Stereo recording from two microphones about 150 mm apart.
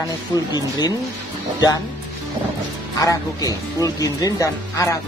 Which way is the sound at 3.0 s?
25° left (ahead or behind).